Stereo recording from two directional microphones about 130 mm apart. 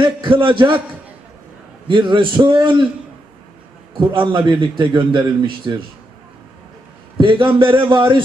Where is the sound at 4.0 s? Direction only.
35° right (ahead or behind).